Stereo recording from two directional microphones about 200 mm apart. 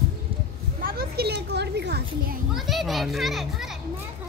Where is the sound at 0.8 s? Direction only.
50° right (ahead or behind).